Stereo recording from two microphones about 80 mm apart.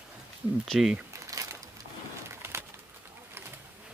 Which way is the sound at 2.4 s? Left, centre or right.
Right.